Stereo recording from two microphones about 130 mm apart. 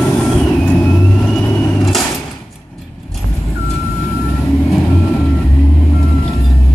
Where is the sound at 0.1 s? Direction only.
15° left (ahead or behind).